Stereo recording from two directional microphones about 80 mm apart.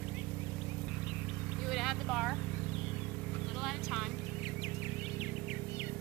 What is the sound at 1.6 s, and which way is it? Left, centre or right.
Vehicle, centre.